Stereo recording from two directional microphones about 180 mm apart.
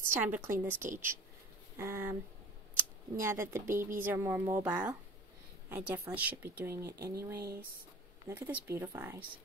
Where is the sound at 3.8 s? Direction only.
50° right (ahead or behind).